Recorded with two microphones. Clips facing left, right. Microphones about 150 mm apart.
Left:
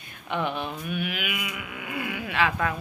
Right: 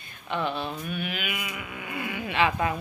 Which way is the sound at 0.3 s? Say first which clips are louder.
Even; 15° left (ahead or behind).